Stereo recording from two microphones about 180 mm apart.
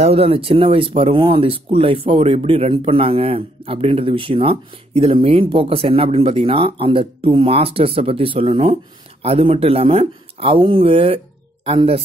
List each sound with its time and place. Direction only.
0.0 s a man's voice: 35° right (ahead or behind)